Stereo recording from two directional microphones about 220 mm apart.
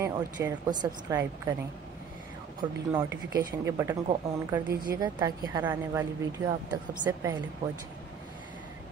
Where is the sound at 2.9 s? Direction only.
10° right (ahead or behind).